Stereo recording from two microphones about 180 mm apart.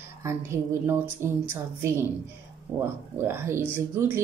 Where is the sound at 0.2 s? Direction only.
15° right (ahead or behind).